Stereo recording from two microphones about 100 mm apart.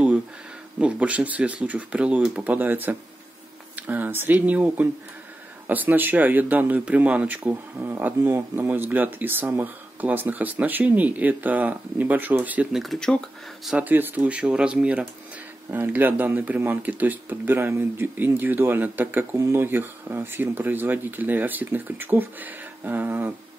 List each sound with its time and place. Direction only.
0.7 s speech: 15° right (ahead or behind)
12.7 s speech: centre (ahead or behind)
13.7 s speech: 15° right (ahead or behind)